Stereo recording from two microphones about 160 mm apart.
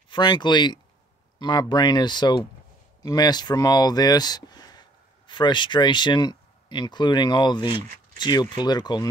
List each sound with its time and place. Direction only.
0.1 s speech: 30° left (ahead or behind)